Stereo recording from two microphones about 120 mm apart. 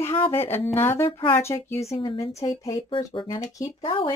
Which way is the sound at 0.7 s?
20° left (ahead or behind).